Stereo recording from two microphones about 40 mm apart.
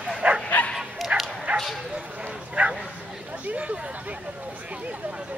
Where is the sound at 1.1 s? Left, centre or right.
Right.